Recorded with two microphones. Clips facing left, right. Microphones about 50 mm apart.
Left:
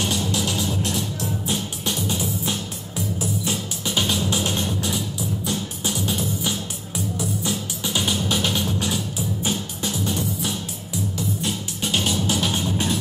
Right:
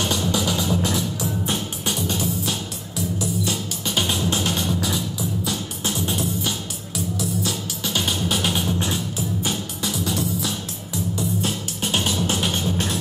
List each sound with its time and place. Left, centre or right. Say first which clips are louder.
1.9 s music: right 1 dB; centre
3.8 s music: even; centre
7.2 s music: even; centre
8.0 s music: left 1 dB; centre
8.7 s music: even; centre
9.8 s music: even; right
12.5 s music: even; centre